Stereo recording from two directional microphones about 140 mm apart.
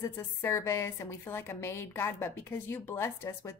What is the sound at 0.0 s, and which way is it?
A woman's voice, 20° left (ahead or behind).